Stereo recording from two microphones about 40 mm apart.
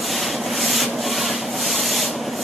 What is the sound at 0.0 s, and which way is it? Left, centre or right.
Rub, centre.